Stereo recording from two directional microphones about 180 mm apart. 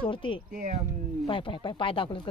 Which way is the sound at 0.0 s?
30° left (ahead or behind).